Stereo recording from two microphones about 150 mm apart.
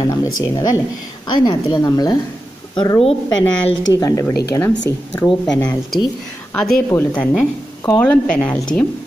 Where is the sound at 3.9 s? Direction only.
20° left (ahead or behind).